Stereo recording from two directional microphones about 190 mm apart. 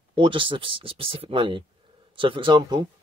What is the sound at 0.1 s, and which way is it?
Speech, 25° right (ahead or behind).